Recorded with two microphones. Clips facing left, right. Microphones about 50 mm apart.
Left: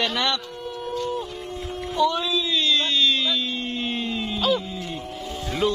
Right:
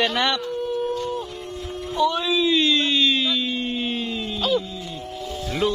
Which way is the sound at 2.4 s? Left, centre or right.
Right.